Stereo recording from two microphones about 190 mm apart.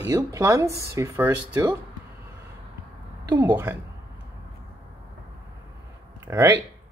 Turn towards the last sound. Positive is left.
turn(degrees=-15)  # may be behind; listen again after turning